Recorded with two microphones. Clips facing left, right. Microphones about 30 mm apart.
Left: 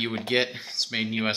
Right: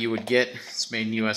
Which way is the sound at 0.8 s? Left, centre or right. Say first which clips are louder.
Right 2 dB; centre.